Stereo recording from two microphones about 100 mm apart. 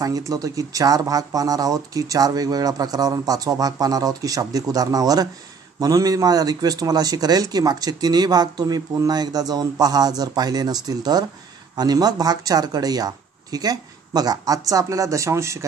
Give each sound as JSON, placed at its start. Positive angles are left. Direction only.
{"t": 0.0, "sound": "a man's voice", "side_deg": -35}